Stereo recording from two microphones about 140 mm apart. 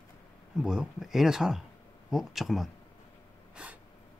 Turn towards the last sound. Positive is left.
turn(degrees=-10)  # may be behind; listen again after turning